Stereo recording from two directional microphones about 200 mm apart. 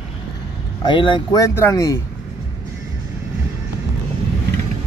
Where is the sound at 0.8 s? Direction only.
25° left (ahead or behind).